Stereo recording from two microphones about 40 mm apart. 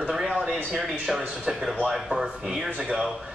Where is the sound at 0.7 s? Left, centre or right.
Centre.